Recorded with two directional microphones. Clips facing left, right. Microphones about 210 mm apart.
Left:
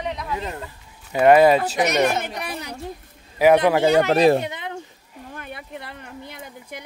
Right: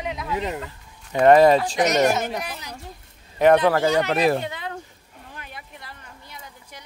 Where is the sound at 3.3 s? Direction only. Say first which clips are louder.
Left 1 dB; 10° left (ahead or behind).